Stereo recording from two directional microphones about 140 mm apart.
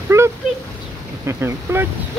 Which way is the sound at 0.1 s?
20° right (ahead or behind).